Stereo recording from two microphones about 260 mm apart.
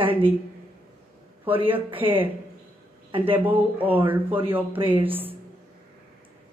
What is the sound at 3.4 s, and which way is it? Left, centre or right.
Speech, centre.